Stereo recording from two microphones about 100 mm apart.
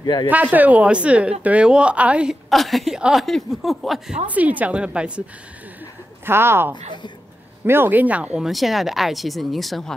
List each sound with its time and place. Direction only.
0.0 s speech: 50° left (ahead or behind)
0.3 s a woman's voice: 15° right (ahead or behind)
2.5 s speech: centre (ahead or behind)
4.3 s a woman's voice: 15° right (ahead or behind)
6.2 s a woman's voice: 25° right (ahead or behind)
8.5 s speech: centre (ahead or behind)